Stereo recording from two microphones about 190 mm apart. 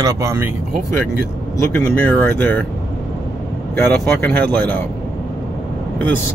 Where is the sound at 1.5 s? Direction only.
10° left (ahead or behind).